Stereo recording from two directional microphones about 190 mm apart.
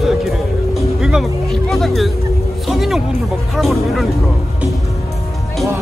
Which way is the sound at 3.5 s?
Centre (ahead or behind).